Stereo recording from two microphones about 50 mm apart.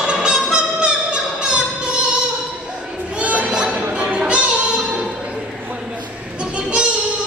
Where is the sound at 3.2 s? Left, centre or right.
Right.